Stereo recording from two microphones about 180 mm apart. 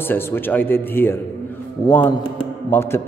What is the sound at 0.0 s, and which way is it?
A man's voice, 10° left (ahead or behind).